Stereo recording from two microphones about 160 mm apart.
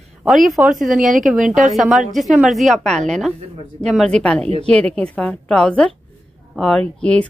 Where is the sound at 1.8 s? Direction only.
Centre (ahead or behind).